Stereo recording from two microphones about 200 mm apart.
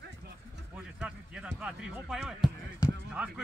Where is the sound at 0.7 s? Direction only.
5° right (ahead or behind).